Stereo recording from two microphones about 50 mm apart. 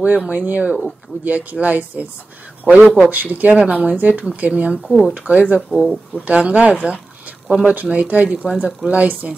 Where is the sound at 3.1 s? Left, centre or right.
Right.